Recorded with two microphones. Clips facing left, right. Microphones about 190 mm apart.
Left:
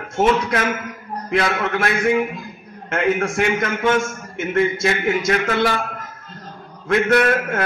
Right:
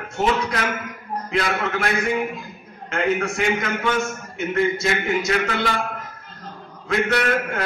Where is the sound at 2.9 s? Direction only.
50° left (ahead or behind).